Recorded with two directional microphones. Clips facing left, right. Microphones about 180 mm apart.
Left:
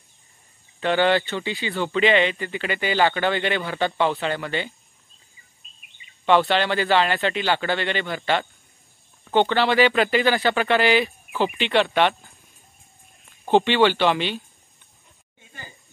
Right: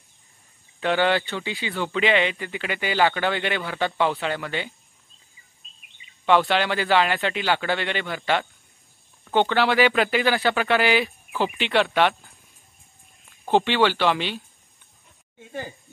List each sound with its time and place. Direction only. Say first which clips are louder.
0.7 s speech: left 2 dB; 5° right (ahead or behind)
6.2 s speech: left 1 dB; 10° right (ahead or behind)
13.5 s speech: left 2 dB; 5° right (ahead or behind)